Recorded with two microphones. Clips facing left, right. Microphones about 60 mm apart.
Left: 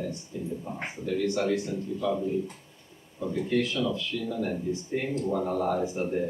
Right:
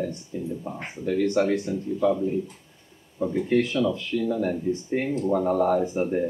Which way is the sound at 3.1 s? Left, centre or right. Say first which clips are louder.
Right 5 dB; right.